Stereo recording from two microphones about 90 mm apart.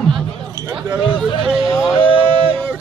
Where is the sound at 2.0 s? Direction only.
65° left (ahead or behind).